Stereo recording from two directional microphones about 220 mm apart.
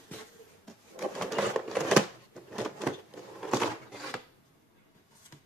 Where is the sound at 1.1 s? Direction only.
Centre (ahead or behind).